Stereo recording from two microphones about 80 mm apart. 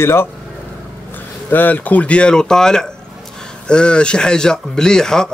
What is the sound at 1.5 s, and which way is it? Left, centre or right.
Speech, left.